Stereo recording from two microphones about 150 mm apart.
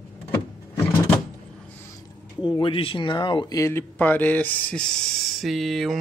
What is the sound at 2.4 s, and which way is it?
Speech, 35° left (ahead or behind).